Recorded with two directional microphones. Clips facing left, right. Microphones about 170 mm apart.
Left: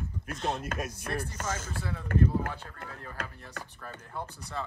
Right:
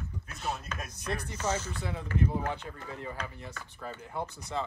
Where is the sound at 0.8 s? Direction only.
55° left (ahead or behind).